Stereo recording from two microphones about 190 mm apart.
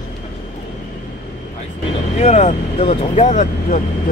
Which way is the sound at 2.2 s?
35° left (ahead or behind).